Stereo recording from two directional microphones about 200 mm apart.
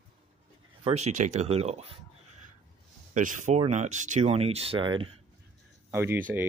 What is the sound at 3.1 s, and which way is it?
Speech, 40° right (ahead or behind).